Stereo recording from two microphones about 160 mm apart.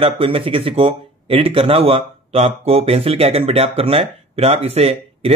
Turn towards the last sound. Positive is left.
turn(degrees=-40)  # may be behind; listen again after turning